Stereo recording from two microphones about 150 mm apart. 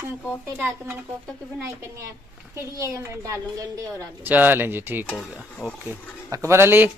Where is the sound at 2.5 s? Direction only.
20° right (ahead or behind).